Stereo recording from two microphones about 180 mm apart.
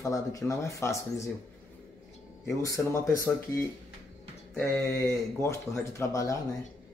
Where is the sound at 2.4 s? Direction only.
15° left (ahead or behind).